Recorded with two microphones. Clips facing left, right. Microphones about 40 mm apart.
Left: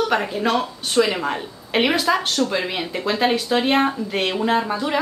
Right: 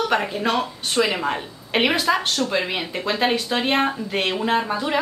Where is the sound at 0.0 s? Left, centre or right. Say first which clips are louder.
Left 1 dB; centre.